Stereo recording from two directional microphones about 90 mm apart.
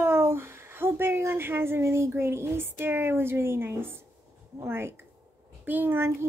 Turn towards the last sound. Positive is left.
turn(degrees=-25)  # may be behind; listen again after turning